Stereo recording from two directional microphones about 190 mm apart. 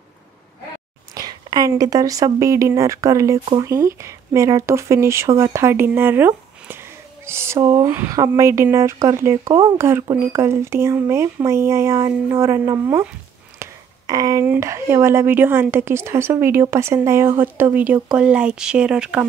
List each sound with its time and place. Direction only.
1.1 s speech: 20° right (ahead or behind)
13.6 s a sound: 20° right (ahead or behind)
14.4 s speech: 10° right (ahead or behind)